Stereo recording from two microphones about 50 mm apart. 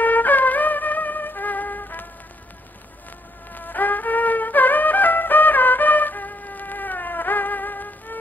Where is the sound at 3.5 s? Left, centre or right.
Left.